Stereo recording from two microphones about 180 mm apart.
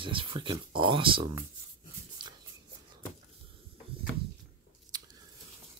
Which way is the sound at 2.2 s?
25° right (ahead or behind).